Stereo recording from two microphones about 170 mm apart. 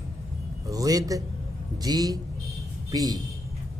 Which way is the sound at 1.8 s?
25° right (ahead or behind).